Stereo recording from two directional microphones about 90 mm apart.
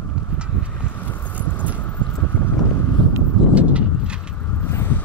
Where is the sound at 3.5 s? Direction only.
15° right (ahead or behind).